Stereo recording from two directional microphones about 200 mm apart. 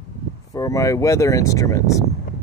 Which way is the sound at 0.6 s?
15° left (ahead or behind).